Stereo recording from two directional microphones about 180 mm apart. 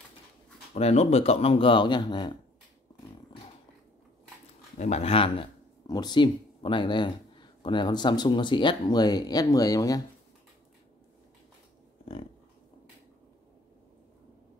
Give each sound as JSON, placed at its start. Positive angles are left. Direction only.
{"t": 0.7, "sound": "speech", "side_deg": 35}
{"t": 4.7, "sound": "speech", "side_deg": 40}